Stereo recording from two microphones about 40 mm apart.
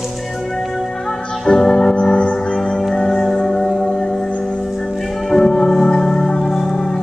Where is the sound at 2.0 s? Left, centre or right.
Left.